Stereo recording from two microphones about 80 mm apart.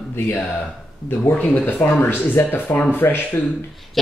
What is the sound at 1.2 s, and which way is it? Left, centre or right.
Speech, left.